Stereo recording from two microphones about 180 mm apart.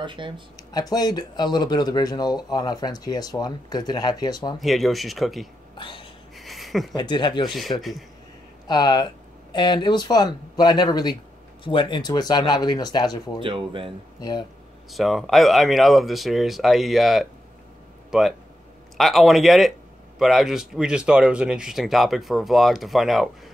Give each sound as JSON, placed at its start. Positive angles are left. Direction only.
{"t": 0.0, "sound": "speech", "side_deg": -25}
{"t": 0.6, "sound": "speech", "side_deg": 20}
{"t": 4.6, "sound": "speech", "side_deg": 0}
{"t": 5.8, "sound": "a sound", "side_deg": 30}
{"t": 6.3, "sound": "a sound", "side_deg": 0}
{"t": 7.0, "sound": "speech", "side_deg": 25}
{"t": 8.6, "sound": "speech", "side_deg": 25}
{"t": 13.4, "sound": "speech", "side_deg": -30}
{"t": 14.9, "sound": "speech", "side_deg": 0}